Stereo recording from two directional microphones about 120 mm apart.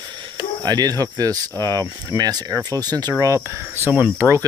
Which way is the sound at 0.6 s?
35° right (ahead or behind).